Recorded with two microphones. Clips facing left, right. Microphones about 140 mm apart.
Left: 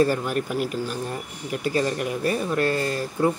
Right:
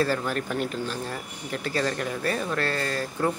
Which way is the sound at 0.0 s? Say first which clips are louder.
Left 4 dB; 15° left (ahead or behind).